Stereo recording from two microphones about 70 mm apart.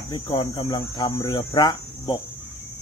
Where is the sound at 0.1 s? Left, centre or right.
Left.